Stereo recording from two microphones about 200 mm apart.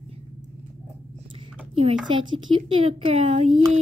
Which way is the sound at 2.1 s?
25° right (ahead or behind).